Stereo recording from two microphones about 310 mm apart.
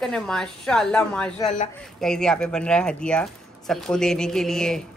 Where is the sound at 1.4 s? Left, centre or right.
Left.